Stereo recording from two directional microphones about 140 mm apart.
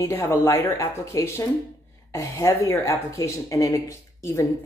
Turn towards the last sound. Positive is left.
turn(degrees=20)  # may be behind; listen again after turning